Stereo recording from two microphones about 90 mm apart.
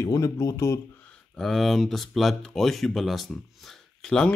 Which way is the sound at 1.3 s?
Centre (ahead or behind).